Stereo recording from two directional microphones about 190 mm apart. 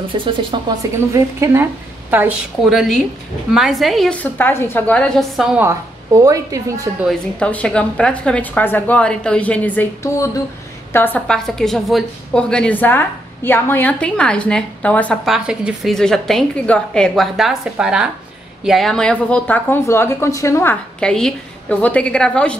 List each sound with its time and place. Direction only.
0.2 s a woman's voice: 25° right (ahead or behind); by 5.7 s 5° right (ahead or behind)
5.7 s speech: 15° right (ahead or behind)
7.1 s a woman's voice: 5° left (ahead or behind)
10.9 s a woman's voice: 10° left (ahead or behind)